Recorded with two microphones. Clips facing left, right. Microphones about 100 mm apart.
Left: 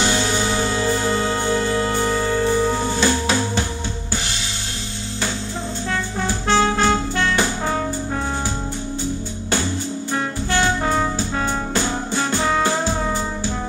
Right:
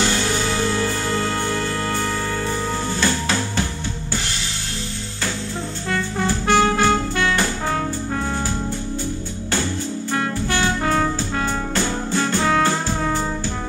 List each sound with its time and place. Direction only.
0.0 s music: 20° left (ahead or behind)
6.2 s music: 20° left (ahead or behind)
10.8 s music: 15° left (ahead or behind)